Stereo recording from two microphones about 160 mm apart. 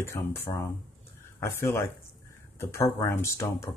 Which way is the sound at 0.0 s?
15° left (ahead or behind).